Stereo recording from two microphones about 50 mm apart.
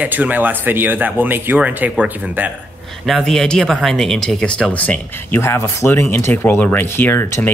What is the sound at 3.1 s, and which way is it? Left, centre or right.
Speech, centre.